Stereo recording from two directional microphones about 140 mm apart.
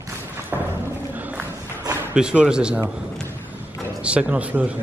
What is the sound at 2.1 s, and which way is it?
Speech, 5° right (ahead or behind).